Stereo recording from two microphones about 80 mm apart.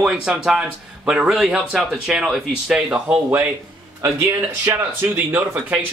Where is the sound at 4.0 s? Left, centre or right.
Right.